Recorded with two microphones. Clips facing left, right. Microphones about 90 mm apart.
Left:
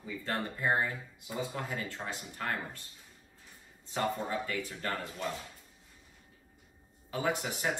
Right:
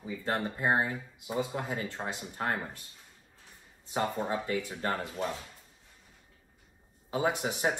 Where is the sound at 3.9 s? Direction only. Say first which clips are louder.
Right 2 dB; 20° right (ahead or behind).